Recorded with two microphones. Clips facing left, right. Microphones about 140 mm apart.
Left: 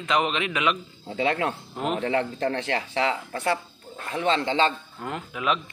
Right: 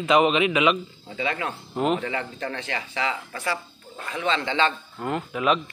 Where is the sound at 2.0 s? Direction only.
60° left (ahead or behind).